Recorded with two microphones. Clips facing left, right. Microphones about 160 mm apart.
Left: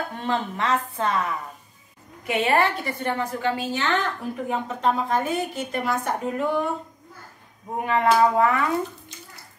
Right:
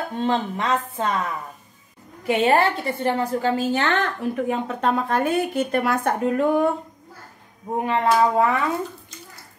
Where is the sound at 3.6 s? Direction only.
50° right (ahead or behind).